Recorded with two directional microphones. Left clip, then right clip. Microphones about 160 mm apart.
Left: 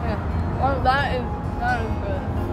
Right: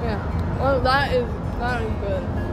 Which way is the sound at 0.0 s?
55° right (ahead or behind).